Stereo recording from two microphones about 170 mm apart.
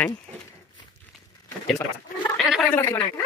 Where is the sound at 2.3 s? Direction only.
Centre (ahead or behind).